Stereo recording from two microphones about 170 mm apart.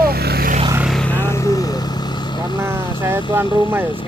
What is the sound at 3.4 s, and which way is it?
Speech, 30° left (ahead or behind).